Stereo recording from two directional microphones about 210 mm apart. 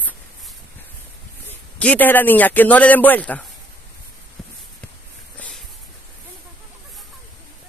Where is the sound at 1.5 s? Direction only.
5° left (ahead or behind).